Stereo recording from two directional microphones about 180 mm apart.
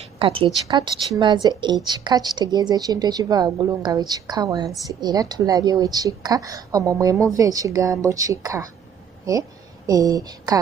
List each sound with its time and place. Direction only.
0.2 s a woman's voice: 30° right (ahead or behind)